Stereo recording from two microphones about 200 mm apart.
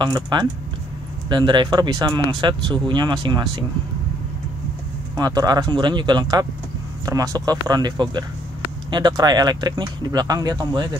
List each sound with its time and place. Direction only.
0.0 s speech: 20° right (ahead or behind)
5.1 s speech: 20° right (ahead or behind)